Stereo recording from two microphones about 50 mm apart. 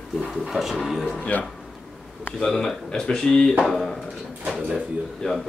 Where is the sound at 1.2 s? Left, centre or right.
Left.